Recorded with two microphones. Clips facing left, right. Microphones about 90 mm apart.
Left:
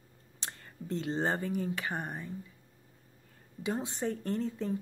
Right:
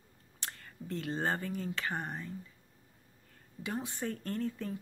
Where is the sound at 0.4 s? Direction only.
25° left (ahead or behind).